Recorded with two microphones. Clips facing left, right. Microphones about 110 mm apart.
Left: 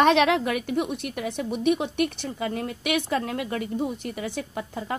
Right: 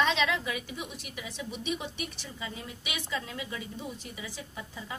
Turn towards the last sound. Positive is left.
turn(degrees=65)  # may be behind; listen again after turning